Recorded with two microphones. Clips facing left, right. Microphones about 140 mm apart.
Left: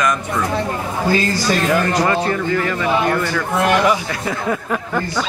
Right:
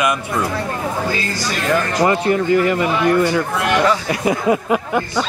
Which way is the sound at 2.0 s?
20° right (ahead or behind).